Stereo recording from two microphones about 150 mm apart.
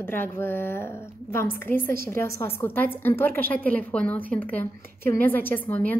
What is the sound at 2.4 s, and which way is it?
A woman's voice, 15° left (ahead or behind).